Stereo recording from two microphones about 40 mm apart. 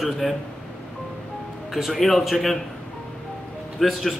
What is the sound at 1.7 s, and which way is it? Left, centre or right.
Speech, centre.